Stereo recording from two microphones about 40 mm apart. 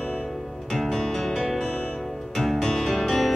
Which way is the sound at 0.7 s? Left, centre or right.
Centre.